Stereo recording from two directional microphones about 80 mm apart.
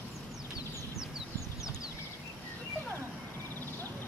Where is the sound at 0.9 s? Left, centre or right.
Centre.